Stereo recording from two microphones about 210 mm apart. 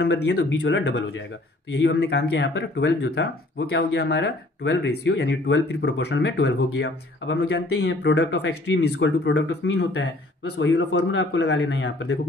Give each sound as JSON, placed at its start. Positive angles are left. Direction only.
{"t": 0.0, "sound": "speech", "side_deg": 55}